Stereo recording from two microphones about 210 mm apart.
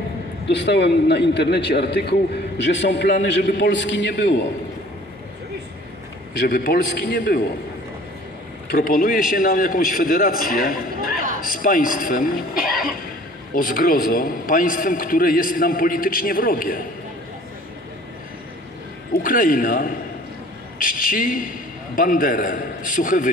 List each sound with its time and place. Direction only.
0.5 s a man's voice: 55° left (ahead or behind)
6.4 s a man's voice: 45° left (ahead or behind)
8.7 s a man's voice: 40° left (ahead or behind)
19.2 s a man's voice: 40° left (ahead or behind)